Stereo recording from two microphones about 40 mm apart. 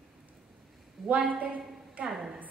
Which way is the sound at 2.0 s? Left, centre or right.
Centre.